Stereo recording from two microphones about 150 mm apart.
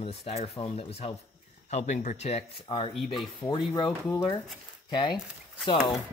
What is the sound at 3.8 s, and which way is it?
Speech, 20° left (ahead or behind).